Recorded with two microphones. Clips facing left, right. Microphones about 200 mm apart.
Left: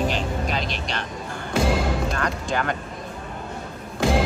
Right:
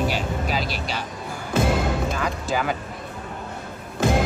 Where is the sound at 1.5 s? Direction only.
Centre (ahead or behind).